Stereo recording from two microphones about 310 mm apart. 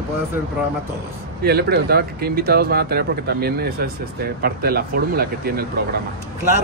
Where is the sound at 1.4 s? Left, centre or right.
Right.